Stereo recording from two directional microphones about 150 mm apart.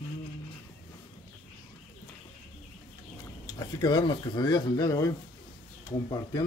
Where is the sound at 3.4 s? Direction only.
30° left (ahead or behind).